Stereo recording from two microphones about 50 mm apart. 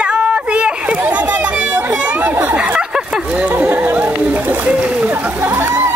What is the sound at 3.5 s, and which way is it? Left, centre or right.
Chatter, right.